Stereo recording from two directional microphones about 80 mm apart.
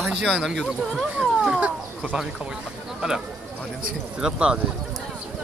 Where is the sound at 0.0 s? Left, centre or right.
Centre.